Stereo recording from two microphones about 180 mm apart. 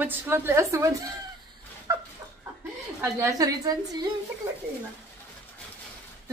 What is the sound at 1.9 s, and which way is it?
Chicken, 15° right (ahead or behind).